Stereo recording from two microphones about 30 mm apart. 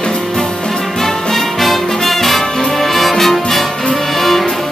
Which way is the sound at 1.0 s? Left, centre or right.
Centre.